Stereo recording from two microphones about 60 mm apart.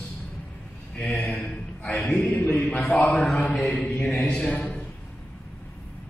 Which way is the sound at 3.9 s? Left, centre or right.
Left.